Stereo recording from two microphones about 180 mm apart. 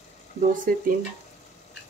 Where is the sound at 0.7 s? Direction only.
50° right (ahead or behind).